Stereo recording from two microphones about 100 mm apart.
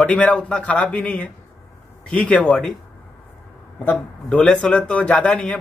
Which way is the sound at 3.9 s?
10° left (ahead or behind).